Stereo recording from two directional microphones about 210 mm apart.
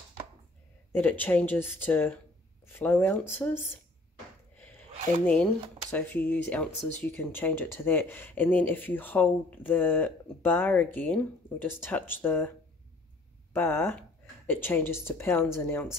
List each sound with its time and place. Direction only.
0.9 s speech: 10° left (ahead or behind)
5.2 s speech: 5° left (ahead or behind)